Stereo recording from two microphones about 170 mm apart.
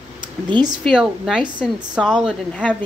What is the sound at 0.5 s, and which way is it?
Speech, 25° right (ahead or behind).